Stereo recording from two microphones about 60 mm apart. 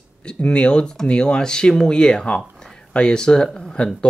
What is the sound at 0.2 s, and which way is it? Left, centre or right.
Speech, centre.